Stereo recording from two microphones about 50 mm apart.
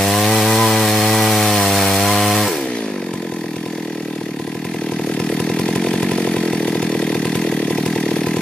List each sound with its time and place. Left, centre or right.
0.0 s wood: centre
5.5 s chainsaw: centre